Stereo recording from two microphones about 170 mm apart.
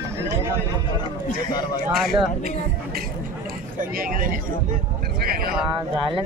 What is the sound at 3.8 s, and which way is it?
Speech, 55° right (ahead or behind).